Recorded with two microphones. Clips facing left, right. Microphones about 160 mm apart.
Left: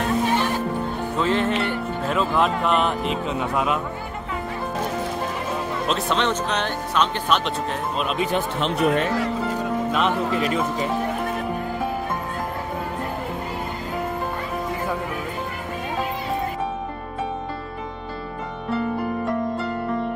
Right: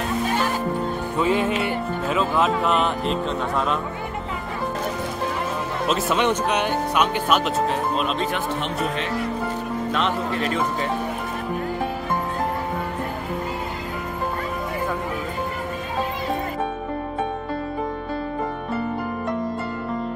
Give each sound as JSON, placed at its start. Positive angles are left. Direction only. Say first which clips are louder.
{"t": 1.1, "sound": "speech", "louder": "even", "side_deg": -10}
{"t": 5.9, "sound": "speech", "louder": "right 2 dB", "side_deg": -5}
{"t": 8.5, "sound": "speech", "louder": "left 5 dB", "side_deg": 90}